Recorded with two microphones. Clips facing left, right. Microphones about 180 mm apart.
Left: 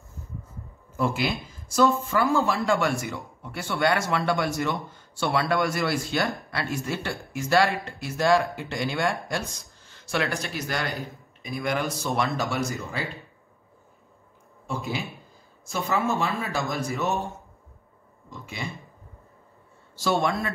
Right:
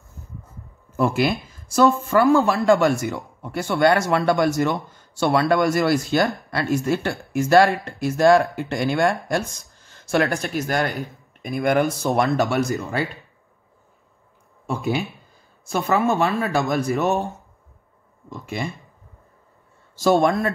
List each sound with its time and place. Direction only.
0.9 s speech: 55° right (ahead or behind)
15.6 s speech: 60° right (ahead or behind)
18.4 s speech: 50° right (ahead or behind)
20.0 s speech: 45° right (ahead or behind)